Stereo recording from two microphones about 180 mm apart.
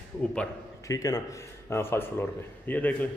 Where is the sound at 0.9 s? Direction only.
20° left (ahead or behind).